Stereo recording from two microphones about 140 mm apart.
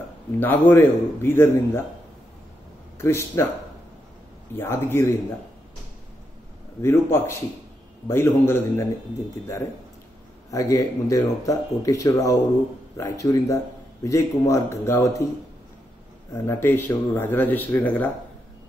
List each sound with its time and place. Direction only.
0.4 s speech: 15° left (ahead or behind)
3.0 s speech: 20° left (ahead or behind)
4.6 s speech: 15° left (ahead or behind)
6.8 s speech: 15° left (ahead or behind)
10.5 s speech: 25° left (ahead or behind)
16.3 s speech: 20° left (ahead or behind)